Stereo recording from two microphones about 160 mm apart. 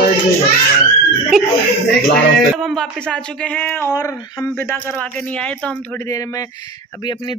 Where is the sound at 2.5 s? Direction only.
Centre (ahead or behind).